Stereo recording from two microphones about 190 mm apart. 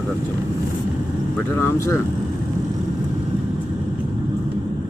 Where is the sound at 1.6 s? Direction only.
15° left (ahead or behind).